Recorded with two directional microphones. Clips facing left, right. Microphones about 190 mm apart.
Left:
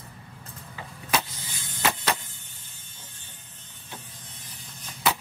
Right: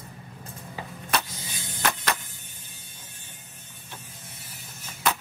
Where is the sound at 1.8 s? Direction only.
15° left (ahead or behind).